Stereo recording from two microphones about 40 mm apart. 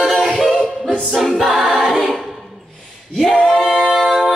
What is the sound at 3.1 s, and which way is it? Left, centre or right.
Singing, centre.